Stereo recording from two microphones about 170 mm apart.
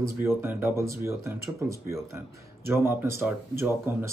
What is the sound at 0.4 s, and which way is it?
Speech, 10° right (ahead or behind).